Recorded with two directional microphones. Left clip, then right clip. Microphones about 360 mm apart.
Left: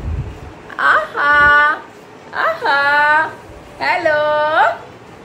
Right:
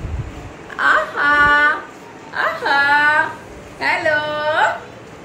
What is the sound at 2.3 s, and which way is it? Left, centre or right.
A man's voice, centre.